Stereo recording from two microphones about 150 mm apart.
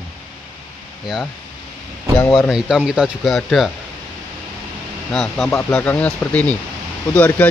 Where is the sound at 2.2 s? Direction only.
10° left (ahead or behind).